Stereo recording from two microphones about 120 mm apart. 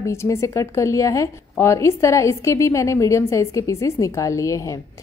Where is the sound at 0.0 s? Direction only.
25° left (ahead or behind).